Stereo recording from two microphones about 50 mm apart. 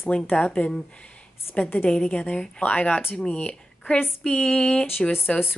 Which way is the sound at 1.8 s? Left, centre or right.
Centre.